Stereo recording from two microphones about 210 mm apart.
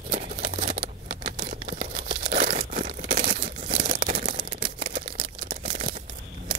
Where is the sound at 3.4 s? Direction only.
40° right (ahead or behind).